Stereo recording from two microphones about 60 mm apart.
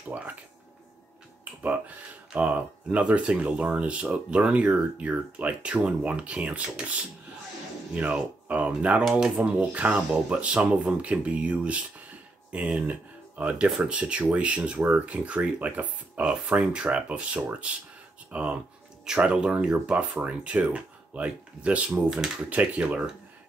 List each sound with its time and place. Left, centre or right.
0.1 s speech: right
1.4 s speech: right